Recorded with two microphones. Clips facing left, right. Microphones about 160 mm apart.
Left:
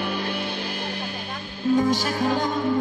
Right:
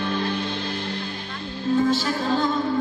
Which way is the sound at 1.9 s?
15° left (ahead or behind).